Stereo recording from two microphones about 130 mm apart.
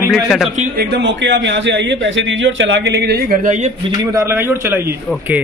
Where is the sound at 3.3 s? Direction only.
80° right.